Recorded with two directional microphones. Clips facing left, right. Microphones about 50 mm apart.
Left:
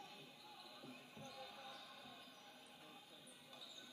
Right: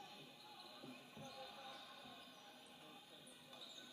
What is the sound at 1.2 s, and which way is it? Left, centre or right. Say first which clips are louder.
Basketball bounce: even; left.